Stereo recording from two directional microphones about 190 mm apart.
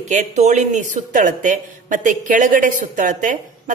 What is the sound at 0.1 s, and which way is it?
Speech, 40° right (ahead or behind).